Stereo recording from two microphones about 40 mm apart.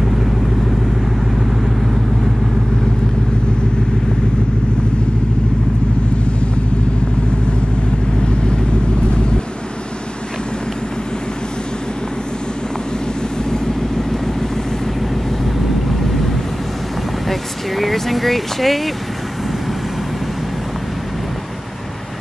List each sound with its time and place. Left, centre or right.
8.2 s vehicle: left
13.5 s vehicle: centre
17.3 s vehicle: centre